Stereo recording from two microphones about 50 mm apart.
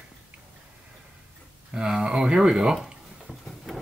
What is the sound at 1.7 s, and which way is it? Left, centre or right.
Speech, centre.